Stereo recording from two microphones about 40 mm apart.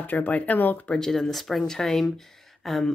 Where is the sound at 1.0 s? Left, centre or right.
Centre.